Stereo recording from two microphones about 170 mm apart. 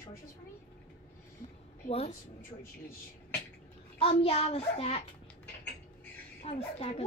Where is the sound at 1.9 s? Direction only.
35° left (ahead or behind).